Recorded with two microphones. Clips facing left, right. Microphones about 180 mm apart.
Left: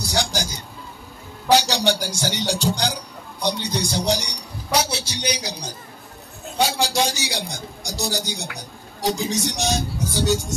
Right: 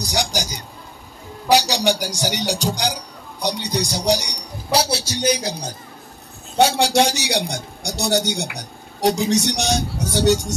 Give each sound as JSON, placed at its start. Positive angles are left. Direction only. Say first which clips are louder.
{"t": 0.0, "sound": "a sound", "louder": "right 1 dB", "side_deg": -15}
{"t": 2.1, "sound": "speech", "louder": "right 1 dB", "side_deg": -15}
{"t": 4.6, "sound": "a man's voice", "louder": "right 3 dB", "side_deg": -35}
{"t": 6.6, "sound": "a man's voice", "louder": "right 5 dB", "side_deg": -65}